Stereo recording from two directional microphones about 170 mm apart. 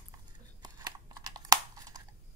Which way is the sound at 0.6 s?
25° right (ahead or behind).